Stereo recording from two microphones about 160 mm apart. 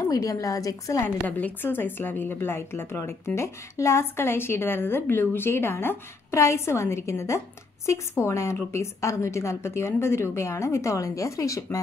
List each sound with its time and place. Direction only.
0.1 s a woman's voice: 20° left (ahead or behind)